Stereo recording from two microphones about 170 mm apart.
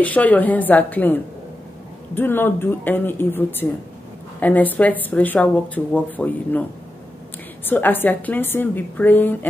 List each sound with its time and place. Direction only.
0.0 s a woman's voice: 10° left (ahead or behind)
7.6 s a woman's voice: 10° left (ahead or behind)